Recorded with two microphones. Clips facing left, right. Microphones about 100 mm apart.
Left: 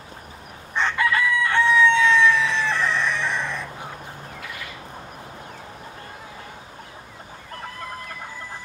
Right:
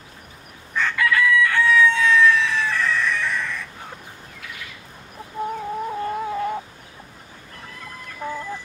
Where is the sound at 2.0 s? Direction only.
Centre (ahead or behind).